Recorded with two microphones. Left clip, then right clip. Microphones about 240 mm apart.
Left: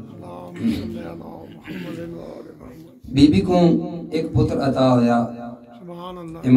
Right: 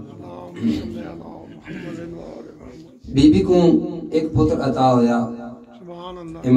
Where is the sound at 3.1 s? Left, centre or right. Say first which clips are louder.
Right 2 dB; left.